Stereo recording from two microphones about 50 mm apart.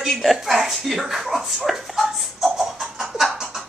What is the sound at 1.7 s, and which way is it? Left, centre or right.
Music, centre.